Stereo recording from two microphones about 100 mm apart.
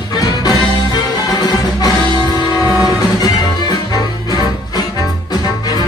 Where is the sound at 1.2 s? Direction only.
40° left (ahead or behind).